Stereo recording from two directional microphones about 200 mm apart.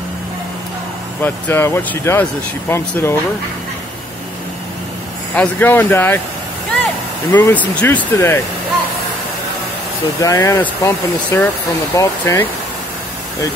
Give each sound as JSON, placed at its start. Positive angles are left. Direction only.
{"t": 1.2, "sound": "speech", "side_deg": 10}
{"t": 5.3, "sound": "speech", "side_deg": 10}
{"t": 7.2, "sound": "speech", "side_deg": 10}
{"t": 10.2, "sound": "speech", "side_deg": 15}